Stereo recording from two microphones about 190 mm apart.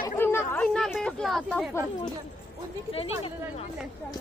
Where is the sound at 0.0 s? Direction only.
15° left (ahead or behind).